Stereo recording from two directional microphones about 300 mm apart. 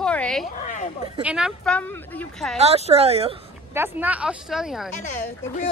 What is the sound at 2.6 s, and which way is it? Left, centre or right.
Speech, right.